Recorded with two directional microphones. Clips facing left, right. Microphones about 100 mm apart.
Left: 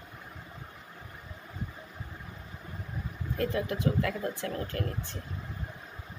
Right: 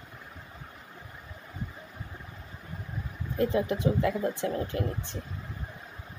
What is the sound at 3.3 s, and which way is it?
Speech, 20° right (ahead or behind).